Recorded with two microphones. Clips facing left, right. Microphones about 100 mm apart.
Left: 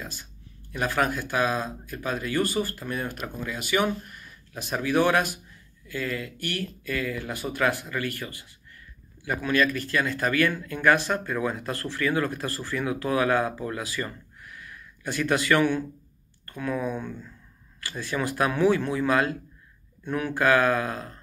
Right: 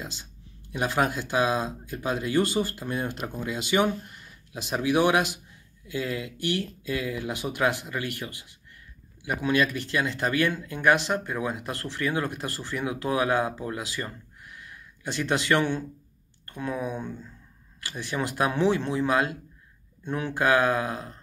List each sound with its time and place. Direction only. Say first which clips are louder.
0.0 s speech: even; 20° right (ahead or behind)